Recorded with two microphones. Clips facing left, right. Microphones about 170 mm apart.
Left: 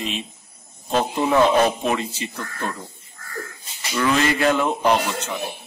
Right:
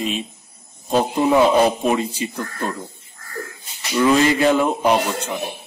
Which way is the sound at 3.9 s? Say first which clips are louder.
Right 5 dB; 15° right (ahead or behind).